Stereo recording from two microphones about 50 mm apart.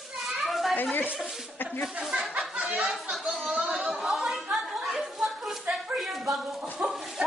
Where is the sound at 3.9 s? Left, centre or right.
Centre.